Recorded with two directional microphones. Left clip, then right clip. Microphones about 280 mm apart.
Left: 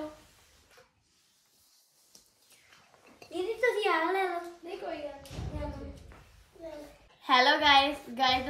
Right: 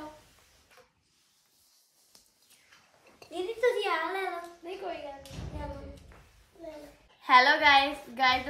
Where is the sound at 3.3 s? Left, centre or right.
Centre.